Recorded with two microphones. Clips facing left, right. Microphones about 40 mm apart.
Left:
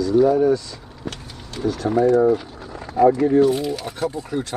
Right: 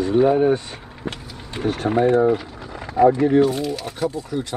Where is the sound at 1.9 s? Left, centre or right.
Right.